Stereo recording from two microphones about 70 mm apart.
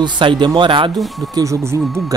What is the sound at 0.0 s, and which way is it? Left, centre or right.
Speech, right.